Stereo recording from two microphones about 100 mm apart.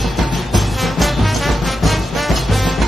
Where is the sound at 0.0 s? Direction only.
Centre (ahead or behind).